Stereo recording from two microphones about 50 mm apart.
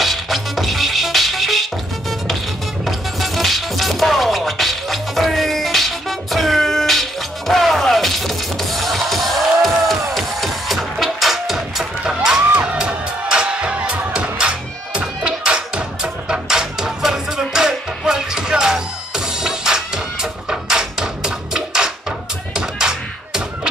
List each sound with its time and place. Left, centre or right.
0.0 s music: centre
2.8 s music: centre